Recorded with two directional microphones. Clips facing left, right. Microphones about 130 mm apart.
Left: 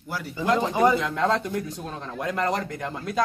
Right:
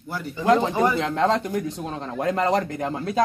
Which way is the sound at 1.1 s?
25° right (ahead or behind).